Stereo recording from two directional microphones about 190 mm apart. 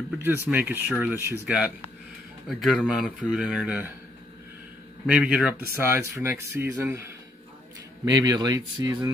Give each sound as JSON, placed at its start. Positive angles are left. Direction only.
{"t": 0.2, "sound": "a man's voice", "side_deg": -10}
{"t": 5.0, "sound": "speech", "side_deg": -5}